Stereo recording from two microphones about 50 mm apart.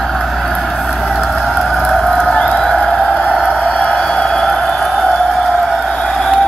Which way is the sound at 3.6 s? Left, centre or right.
Centre.